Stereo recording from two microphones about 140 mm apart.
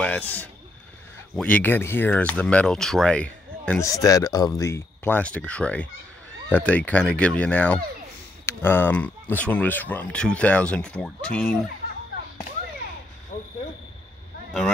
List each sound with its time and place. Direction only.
0.0 s speech: 10° left (ahead or behind)
3.8 s speech: 25° left (ahead or behind); by 11.5 s 5° left (ahead or behind)
13.3 s speech: 70° left (ahead or behind)